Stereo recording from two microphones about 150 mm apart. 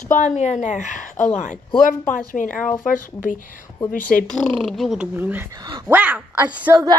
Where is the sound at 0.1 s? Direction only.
55° left (ahead or behind).